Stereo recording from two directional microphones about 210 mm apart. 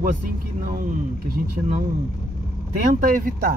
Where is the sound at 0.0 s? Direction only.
40° right (ahead or behind).